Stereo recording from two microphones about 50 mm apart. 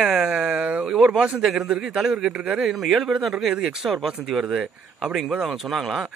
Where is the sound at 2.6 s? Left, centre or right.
Centre.